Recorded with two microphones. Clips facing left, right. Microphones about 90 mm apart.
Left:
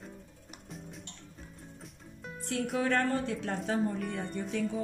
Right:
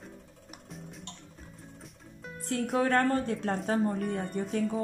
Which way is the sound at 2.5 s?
40° right (ahead or behind).